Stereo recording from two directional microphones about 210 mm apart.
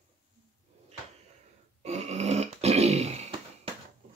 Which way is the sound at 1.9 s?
30° right (ahead or behind).